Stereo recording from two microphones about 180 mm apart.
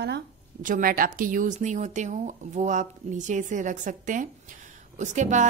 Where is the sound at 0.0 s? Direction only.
65° right (ahead or behind).